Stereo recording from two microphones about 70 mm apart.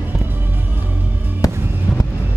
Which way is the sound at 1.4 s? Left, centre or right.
Left.